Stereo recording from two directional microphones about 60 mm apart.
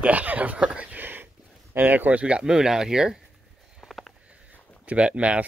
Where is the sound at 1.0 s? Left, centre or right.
Right.